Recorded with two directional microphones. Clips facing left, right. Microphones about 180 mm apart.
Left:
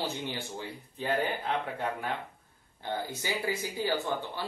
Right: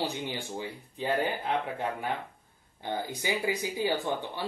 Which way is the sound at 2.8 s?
15° right (ahead or behind).